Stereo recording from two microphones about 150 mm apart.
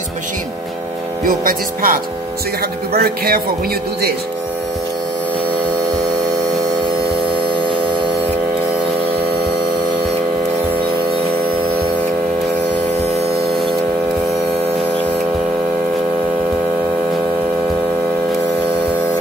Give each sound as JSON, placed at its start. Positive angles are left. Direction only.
{"t": 1.2, "sound": "speech", "side_deg": -70}
{"t": 2.9, "sound": "speech", "side_deg": -85}